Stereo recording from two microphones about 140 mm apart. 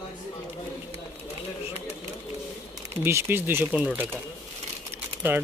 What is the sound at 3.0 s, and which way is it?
Speech, 15° right (ahead or behind).